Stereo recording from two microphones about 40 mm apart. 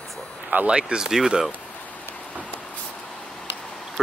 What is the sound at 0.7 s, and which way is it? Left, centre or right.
Speech, right.